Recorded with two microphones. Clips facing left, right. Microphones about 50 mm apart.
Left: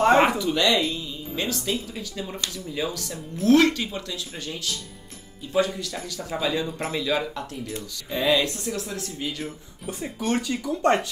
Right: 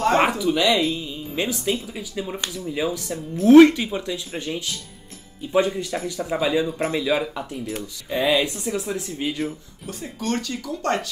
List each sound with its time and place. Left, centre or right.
0.2 s speech: centre
0.9 s speech: centre
9.8 s speech: centre